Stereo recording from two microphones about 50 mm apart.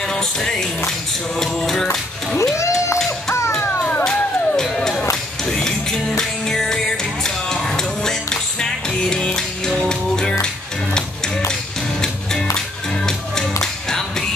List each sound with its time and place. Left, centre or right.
0.1 s music: centre
2.5 s a sound: left
4.0 s music: centre
12.0 s music: centre